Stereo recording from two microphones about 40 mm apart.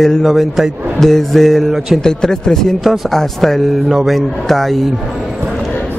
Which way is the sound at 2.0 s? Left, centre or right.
Centre.